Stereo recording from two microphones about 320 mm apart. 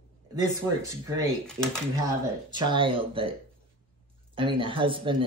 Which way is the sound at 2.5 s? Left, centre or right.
Centre.